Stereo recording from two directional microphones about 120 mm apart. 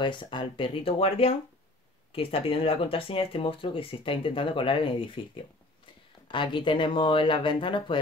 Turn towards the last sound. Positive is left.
turn(degrees=45)  # may be behind; listen again after turning